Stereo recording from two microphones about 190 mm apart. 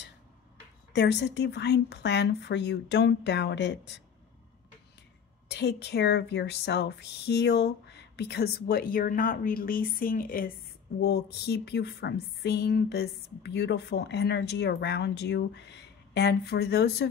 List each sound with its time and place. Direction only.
0.9 s speech: 65° left (ahead or behind)
5.5 s speech: 60° left (ahead or behind)
11.0 s speech: 60° left (ahead or behind)